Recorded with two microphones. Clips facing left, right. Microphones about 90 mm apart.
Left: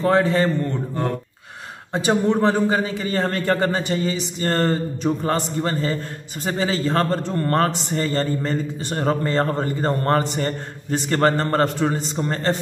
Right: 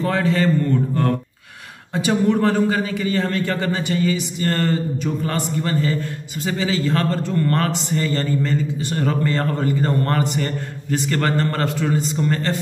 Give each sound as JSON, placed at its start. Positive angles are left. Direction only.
{"t": 0.0, "sound": "a man's voice", "side_deg": 25}
{"t": 2.0, "sound": "a man's voice", "side_deg": 30}